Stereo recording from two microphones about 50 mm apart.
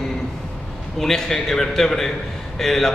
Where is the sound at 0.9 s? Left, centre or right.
Centre.